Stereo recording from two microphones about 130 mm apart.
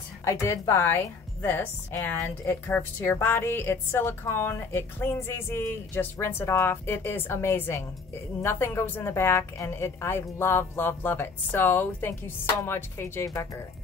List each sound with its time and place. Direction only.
0.2 s a woman's voice: 20° left (ahead or behind)